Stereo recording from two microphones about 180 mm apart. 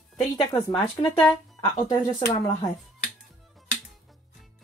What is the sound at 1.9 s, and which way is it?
Speech, 20° left (ahead or behind).